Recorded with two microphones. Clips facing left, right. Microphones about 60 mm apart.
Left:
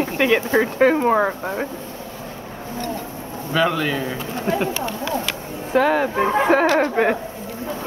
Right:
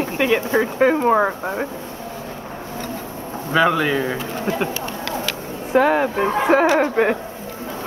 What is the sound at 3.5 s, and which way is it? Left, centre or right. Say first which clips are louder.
Speech: right 3 dB; centre.